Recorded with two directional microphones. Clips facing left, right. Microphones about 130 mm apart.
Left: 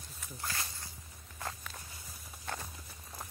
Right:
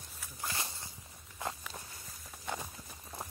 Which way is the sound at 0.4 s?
20° right (ahead or behind).